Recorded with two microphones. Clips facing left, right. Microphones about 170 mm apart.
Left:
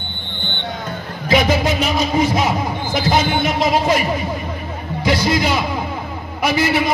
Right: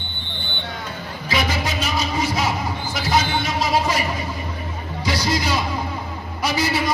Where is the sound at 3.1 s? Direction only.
60° left (ahead or behind).